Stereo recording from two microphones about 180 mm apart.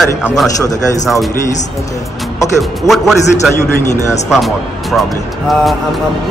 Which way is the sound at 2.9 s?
Centre (ahead or behind).